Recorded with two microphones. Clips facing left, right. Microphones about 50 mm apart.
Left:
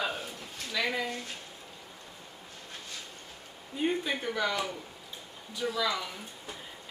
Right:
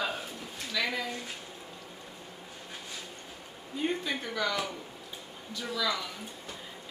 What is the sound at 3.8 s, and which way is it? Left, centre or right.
Speech, centre.